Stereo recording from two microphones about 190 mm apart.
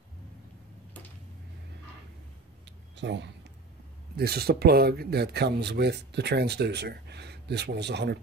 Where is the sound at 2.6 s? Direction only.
65° right (ahead or behind).